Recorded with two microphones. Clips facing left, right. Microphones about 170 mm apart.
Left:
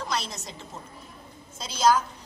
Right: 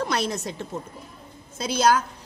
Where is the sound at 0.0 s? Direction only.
60° right (ahead or behind).